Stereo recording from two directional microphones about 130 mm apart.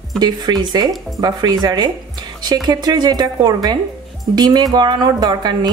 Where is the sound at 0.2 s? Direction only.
35° right (ahead or behind).